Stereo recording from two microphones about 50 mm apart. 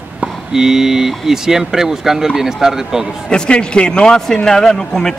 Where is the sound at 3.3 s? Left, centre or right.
Centre.